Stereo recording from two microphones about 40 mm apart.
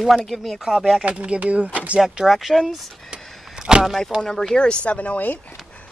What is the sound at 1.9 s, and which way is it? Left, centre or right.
Speech, centre.